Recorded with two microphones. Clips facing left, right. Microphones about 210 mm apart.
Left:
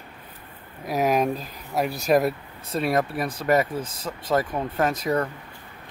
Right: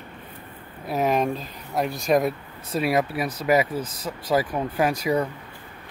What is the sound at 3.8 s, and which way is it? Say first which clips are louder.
Speech: right 1 dB; 25° left (ahead or behind).